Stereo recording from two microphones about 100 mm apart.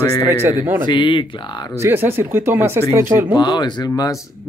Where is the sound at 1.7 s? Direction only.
25° right (ahead or behind).